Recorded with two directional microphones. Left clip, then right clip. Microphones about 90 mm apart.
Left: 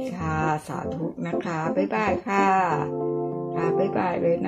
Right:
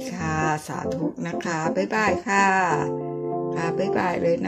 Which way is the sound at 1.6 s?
35° right (ahead or behind).